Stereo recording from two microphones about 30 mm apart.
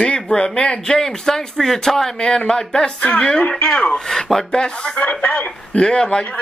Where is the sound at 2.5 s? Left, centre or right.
Left.